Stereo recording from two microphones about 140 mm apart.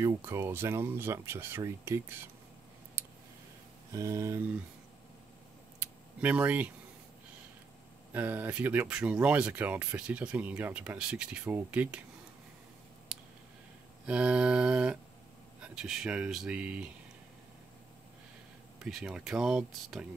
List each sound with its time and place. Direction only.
0.0 s speech: 20° right (ahead or behind)
3.9 s a sound: 20° right (ahead or behind)
6.2 s speech: 10° right (ahead or behind)
8.1 s speech: 10° right (ahead or behind)
14.0 s speech: 5° right (ahead or behind)
18.8 s speech: 5° right (ahead or behind)